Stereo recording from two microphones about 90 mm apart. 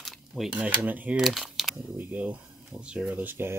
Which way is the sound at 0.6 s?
15° right (ahead or behind).